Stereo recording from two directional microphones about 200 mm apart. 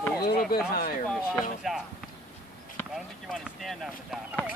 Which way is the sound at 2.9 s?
Centre (ahead or behind).